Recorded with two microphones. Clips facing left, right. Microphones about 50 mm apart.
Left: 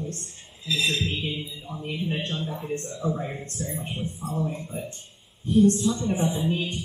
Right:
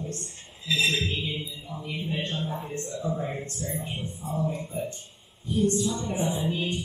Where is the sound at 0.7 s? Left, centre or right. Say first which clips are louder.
Even; centre.